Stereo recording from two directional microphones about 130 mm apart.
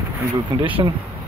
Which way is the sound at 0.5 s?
40° right (ahead or behind).